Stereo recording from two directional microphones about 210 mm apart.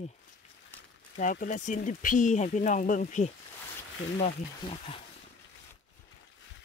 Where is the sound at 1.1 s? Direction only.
40° left (ahead or behind).